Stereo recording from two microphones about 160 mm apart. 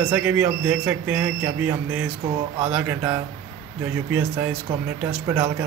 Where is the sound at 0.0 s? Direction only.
10° right (ahead or behind).